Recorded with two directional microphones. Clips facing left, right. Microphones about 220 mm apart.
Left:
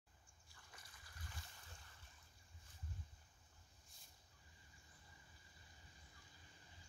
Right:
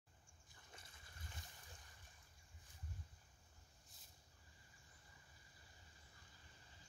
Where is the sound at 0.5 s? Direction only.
25° right (ahead or behind).